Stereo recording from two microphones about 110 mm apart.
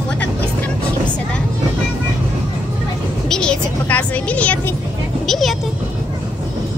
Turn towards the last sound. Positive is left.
turn(degrees=0)  # may be behind; listen again after turning